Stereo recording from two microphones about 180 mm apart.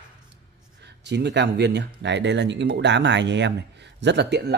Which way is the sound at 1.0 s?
75° right (ahead or behind).